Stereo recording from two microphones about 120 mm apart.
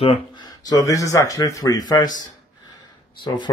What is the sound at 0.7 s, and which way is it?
Speech, 30° left (ahead or behind).